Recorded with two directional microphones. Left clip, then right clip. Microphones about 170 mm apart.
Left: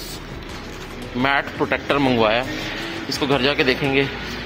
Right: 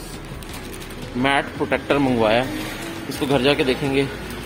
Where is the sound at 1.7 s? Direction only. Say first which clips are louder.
Even; 5° right (ahead or behind).